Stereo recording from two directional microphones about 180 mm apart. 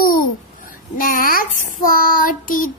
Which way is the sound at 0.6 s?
50° left (ahead or behind).